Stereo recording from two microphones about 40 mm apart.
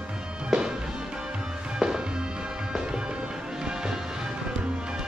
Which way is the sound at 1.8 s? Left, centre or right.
Centre.